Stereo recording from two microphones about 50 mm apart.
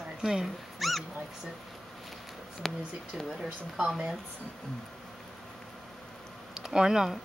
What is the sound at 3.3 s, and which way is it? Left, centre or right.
Speech, centre.